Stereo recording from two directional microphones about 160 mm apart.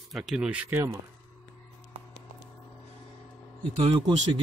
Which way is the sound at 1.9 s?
35° right (ahead or behind).